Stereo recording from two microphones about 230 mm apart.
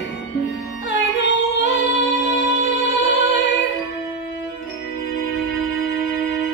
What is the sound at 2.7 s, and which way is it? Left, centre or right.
Music, left.